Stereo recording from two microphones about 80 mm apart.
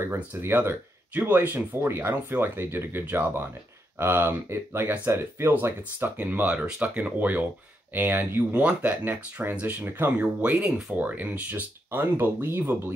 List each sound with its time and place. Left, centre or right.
0.0 s speech: right